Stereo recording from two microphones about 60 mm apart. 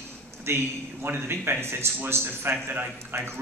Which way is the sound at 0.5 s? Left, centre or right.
Right.